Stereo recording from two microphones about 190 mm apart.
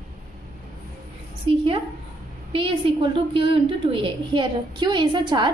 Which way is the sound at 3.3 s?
25° right (ahead or behind).